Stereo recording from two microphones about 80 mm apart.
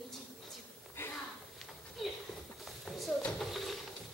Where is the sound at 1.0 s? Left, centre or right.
Left.